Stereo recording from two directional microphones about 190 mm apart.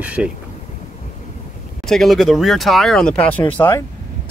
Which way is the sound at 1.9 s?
Centre (ahead or behind).